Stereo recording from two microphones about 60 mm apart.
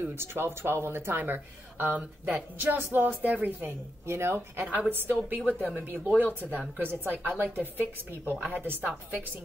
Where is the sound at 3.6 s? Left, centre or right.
Right.